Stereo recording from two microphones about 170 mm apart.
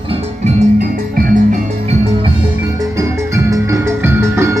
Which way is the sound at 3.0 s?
15° right (ahead or behind).